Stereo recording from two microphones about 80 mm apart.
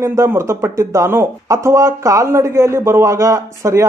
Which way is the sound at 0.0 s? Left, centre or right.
Right.